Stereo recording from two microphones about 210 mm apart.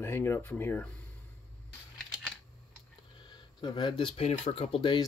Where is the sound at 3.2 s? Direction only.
20° left (ahead or behind).